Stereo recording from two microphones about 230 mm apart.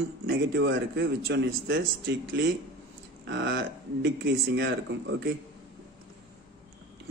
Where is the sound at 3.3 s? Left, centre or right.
Right.